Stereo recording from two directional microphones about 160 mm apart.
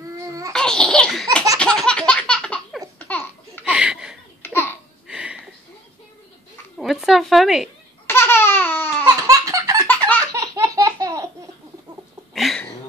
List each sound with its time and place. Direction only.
0.2 s babbling: 20° right (ahead or behind)
0.5 s laughter: 5° left (ahead or behind)
1.6 s baby laughter: 5° left (ahead or behind)
3.1 s laughter: 15° left (ahead or behind)
3.6 s laughter: 5° right (ahead or behind)
4.4 s laughter: 15° left (ahead or behind)
5.0 s a sound: 5° right (ahead or behind)
6.8 s a woman's voice: centre (ahead or behind)
8.1 s a sound: 15° left (ahead or behind)
9.1 s a sound: 20° right (ahead or behind)
9.8 s belly laugh: 10° left (ahead or behind)
10.4 s laughter: 20° right (ahead or behind)
12.4 s a sound: centre (ahead or behind)